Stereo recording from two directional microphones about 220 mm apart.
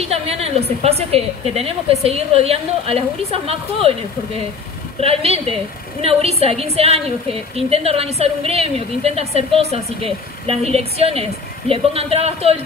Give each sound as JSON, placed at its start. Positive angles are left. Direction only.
{"t": 0.0, "sound": "a woman's voice", "side_deg": -25}
{"t": 5.0, "sound": "a woman's voice", "side_deg": -25}